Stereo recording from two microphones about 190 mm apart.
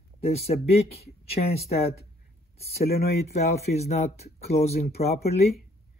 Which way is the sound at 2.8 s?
55° left (ahead or behind).